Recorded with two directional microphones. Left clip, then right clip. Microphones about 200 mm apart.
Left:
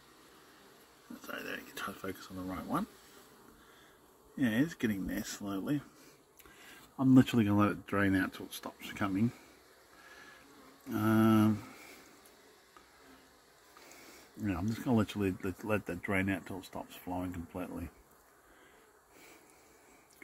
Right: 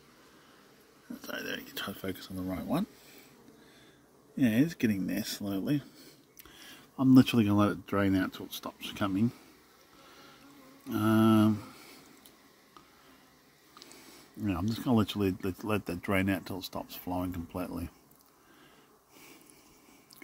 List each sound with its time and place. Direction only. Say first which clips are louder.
1.2 s a sound: right 4 dB; 40° right (ahead or behind)
4.4 s speech: right 4 dB; 45° right (ahead or behind)
7.0 s speech: right 3 dB; 20° right (ahead or behind)
10.9 s speech: right 3 dB; 20° right (ahead or behind)
14.4 s speech: right 3 dB; 20° right (ahead or behind)